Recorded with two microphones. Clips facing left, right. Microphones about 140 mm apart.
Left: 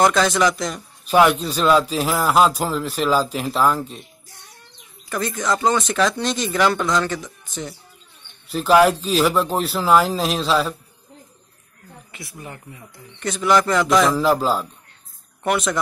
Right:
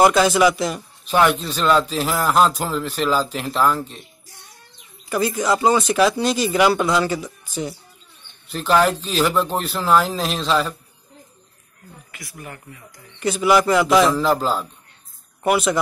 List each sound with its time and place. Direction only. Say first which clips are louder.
0.0 s speech: right 2 dB; 5° right (ahead or behind)
1.4 s speech: left 1 dB; 5° left (ahead or behind)
5.1 s speech: right 3 dB; 5° right (ahead or behind)
8.5 s speech: left 3 dB; 5° left (ahead or behind)
12.1 s speech: left 1 dB; 25° left (ahead or behind)
13.2 s a man's voice: right 2 dB; 5° right (ahead or behind)
14.1 s a man's voice: left 1 dB; 5° left (ahead or behind)